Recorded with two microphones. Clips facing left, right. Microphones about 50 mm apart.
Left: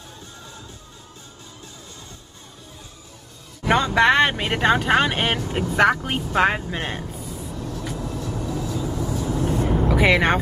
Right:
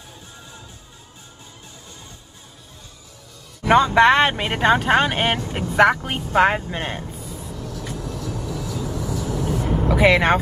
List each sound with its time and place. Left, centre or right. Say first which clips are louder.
3.6 s speech: right 3 dB; centre
7.5 s vehicle: left 1 dB; left
9.8 s speech: right 3 dB; centre